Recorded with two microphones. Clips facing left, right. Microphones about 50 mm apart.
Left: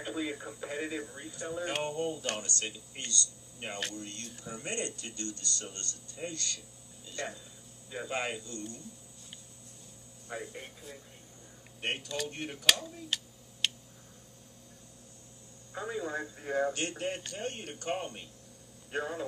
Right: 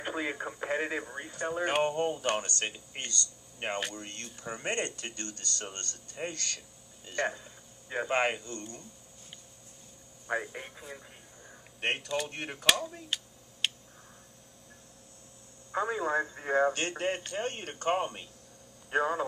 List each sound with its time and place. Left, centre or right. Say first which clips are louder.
0.0 s speech: right 2 dB; right
10.5 s speech: right 3 dB; right
11.8 s speech: right 4 dB; right
13.1 s speech: left 1 dB; centre
13.6 s tick: right 1 dB; centre
15.7 s speech: right 6 dB; right